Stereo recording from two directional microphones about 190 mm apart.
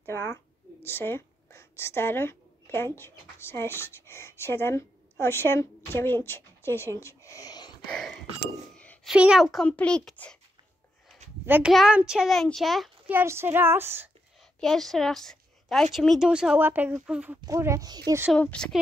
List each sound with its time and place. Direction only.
0.0 s a woman's voice: 15° left (ahead or behind)
7.9 s a sound: centre (ahead or behind)
9.1 s speech: 5° right (ahead or behind)
11.4 s a woman's voice: 10° right (ahead or behind)
13.1 s a woman's voice: 15° right (ahead or behind)
14.6 s speech: centre (ahead or behind)
17.5 s a woman's voice: 15° right (ahead or behind)
18.3 s speech: 5° left (ahead or behind)